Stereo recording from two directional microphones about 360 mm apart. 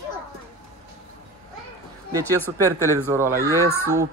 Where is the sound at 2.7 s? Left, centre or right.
Centre.